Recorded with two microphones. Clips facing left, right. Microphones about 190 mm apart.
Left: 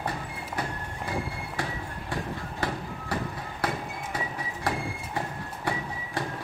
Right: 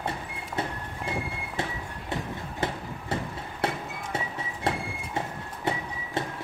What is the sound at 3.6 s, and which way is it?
Music, 25° right (ahead or behind).